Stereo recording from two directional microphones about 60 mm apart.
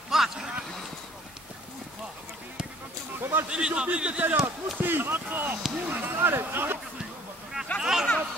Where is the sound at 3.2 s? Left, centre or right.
Right.